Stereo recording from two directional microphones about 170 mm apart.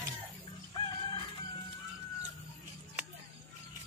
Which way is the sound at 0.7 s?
30° left (ahead or behind).